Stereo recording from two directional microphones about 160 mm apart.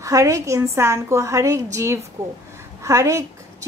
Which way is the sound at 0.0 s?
20° right (ahead or behind).